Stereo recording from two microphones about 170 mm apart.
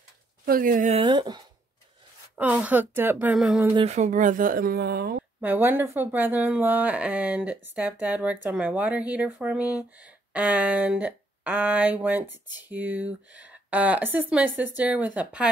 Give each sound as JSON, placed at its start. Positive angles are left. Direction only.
{"t": 0.5, "sound": "speech", "side_deg": -55}
{"t": 0.9, "sound": "speech", "side_deg": -25}
{"t": 2.3, "sound": "speech", "side_deg": -10}
{"t": 3.7, "sound": "speech", "side_deg": -40}
{"t": 5.4, "sound": "speech", "side_deg": -10}